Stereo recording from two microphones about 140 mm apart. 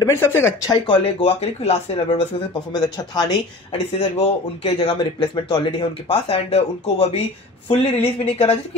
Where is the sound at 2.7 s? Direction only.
30° left (ahead or behind).